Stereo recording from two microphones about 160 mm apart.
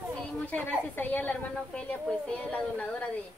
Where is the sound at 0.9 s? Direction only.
10° left (ahead or behind).